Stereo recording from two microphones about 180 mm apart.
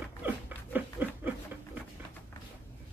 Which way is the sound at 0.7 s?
10° right (ahead or behind).